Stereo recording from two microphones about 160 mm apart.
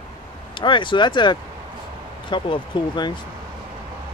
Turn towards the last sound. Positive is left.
turn(degrees=30)  # may be behind; listen again after turning